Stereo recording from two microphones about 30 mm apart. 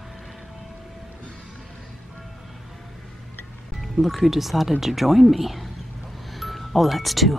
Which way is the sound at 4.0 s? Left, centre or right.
Centre.